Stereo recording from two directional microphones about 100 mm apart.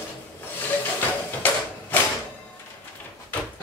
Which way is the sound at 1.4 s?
20° left (ahead or behind).